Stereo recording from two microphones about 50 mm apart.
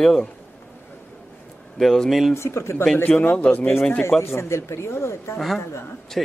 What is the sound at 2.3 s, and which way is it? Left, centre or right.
Speech, left.